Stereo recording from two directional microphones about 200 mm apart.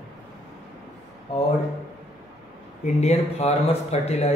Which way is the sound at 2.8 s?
30° left (ahead or behind).